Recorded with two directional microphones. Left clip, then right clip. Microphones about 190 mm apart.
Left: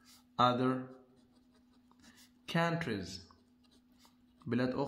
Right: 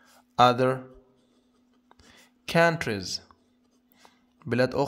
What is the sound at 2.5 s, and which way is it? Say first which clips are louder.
Speech: right 12 dB; 50° right (ahead or behind).